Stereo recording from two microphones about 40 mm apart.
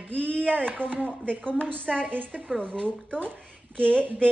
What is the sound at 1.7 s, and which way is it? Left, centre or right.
Speech, right.